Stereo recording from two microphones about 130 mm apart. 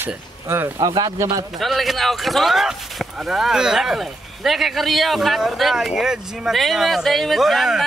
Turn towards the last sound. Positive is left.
turn(degrees=0)  # may be behind; listen again after turning